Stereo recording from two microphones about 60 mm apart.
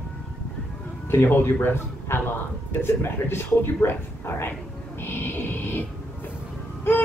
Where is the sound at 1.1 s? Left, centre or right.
Left.